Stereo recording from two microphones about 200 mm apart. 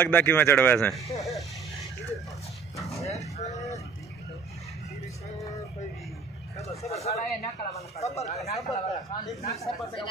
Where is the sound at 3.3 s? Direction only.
35° left (ahead or behind).